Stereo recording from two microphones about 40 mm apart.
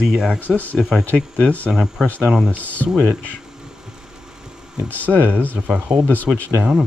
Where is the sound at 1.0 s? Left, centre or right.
Left.